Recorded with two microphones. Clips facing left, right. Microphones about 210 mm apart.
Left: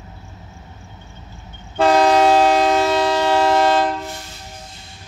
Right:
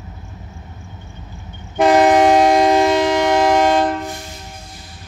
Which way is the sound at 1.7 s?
15° right (ahead or behind).